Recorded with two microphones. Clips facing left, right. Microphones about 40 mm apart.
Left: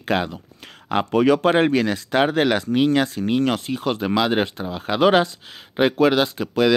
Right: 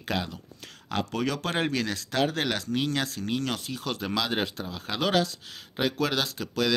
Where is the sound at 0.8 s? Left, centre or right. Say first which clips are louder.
Left 11 dB; left.